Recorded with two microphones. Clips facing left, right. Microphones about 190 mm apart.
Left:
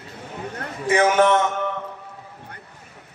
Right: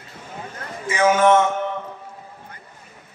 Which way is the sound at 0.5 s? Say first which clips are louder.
Left 3 dB; 60° left (ahead or behind).